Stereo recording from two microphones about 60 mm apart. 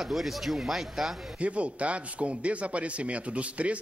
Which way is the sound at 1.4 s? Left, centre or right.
Right.